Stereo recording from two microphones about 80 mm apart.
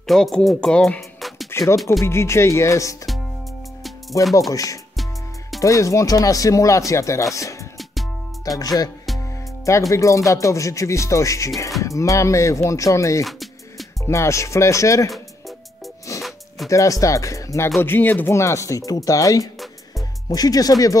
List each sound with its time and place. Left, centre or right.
0.0 s speech: centre
1.5 s music: left
2.0 s speech: left
4.2 s speech: centre
4.5 s speech: left
7.7 s music: centre
8.5 s speech: left
9.7 s speech: left
13.2 s music: centre
14.0 s speech: left
16.2 s music: centre
16.6 s speech: left
17.7 s speech: left
18.3 s speech: left